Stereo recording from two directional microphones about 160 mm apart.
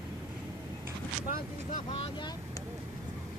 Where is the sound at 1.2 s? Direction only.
55° left (ahead or behind).